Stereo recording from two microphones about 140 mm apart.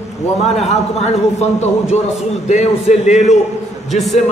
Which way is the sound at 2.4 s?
50° left (ahead or behind).